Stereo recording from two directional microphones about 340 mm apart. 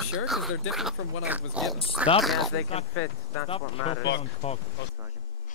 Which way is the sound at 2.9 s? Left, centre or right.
Left.